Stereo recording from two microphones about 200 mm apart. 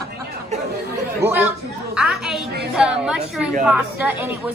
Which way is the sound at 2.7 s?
5° right (ahead or behind).